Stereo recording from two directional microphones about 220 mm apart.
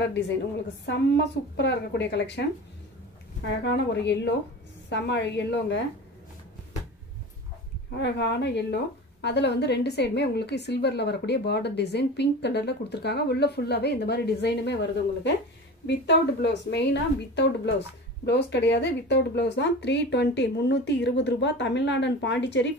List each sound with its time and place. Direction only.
0.8 s a woman's voice: 50° left (ahead or behind)
3.4 s a woman's voice: 50° left (ahead or behind)
8.0 s a woman's voice: 50° left (ahead or behind)